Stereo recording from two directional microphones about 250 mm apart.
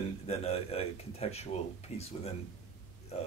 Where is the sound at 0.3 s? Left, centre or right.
Left.